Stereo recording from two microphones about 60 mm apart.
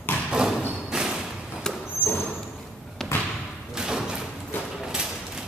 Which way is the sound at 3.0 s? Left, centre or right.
Centre.